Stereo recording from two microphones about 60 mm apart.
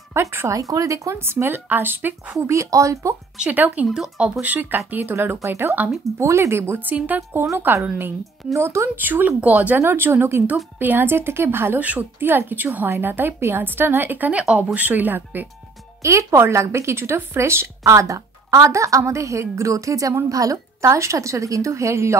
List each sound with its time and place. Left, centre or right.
0.1 s speech: right
0.5 s speech: right
1.1 s speech: right
1.7 s a woman's voice: right
2.4 s speech: right
3.3 s a woman's voice: right
6.1 s speech: right
6.9 s a woman's voice: right
10.4 s a woman's voice: right
11.8 s a woman's voice: right
16.0 s speech: right